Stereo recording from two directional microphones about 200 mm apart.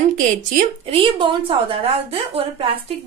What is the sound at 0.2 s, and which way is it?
Speech, 40° right (ahead or behind).